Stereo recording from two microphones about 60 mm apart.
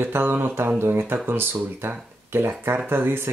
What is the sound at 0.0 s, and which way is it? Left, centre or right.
Speech, right.